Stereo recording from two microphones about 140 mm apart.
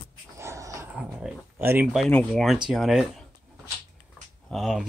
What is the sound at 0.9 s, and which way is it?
Dog, 5° right (ahead or behind).